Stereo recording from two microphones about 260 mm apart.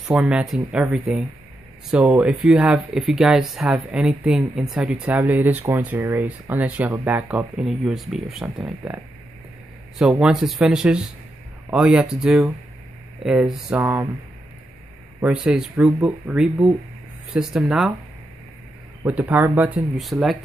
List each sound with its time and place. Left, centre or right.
0.1 s speech: centre
15.1 s speech: centre
19.0 s speech: centre